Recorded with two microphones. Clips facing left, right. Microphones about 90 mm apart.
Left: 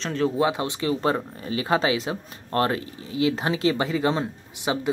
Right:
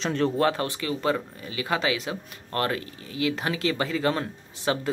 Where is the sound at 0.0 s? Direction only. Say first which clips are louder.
Even; centre (ahead or behind).